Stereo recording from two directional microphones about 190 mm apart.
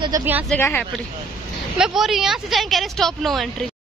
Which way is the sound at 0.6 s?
10° left (ahead or behind).